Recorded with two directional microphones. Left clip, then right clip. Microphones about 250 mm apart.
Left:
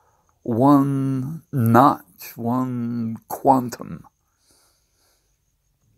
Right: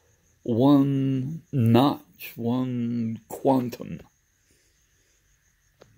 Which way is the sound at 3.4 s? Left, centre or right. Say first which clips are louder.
Left 6 dB; left.